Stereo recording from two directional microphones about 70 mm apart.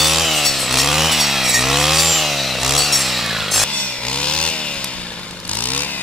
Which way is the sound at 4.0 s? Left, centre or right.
Centre.